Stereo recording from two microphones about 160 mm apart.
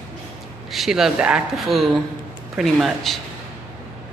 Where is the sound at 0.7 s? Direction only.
Centre (ahead or behind).